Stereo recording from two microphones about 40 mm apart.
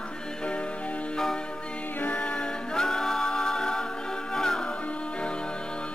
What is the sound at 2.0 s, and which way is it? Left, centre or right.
Music, left.